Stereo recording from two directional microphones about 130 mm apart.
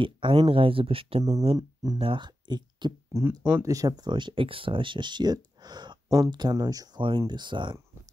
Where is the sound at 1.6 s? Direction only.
30° right (ahead or behind).